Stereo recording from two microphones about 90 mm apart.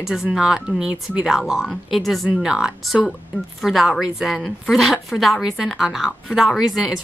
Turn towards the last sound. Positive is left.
turn(degrees=-5)  # may be behind; listen again after turning